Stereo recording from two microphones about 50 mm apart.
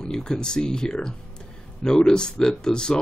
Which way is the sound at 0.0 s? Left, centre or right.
Centre.